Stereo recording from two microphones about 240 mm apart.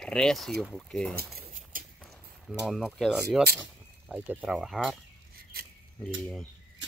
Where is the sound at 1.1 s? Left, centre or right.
Right.